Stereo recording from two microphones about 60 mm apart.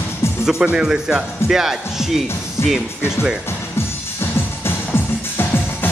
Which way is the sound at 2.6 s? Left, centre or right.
Left.